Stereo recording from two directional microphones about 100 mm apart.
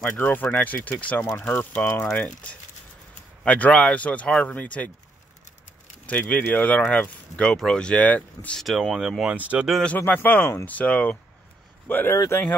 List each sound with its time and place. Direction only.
0.0 s speech: 20° left (ahead or behind)
6.0 s speech: 15° left (ahead or behind)
8.5 s speech: centre (ahead or behind)
9.8 s speech: 15° left (ahead or behind)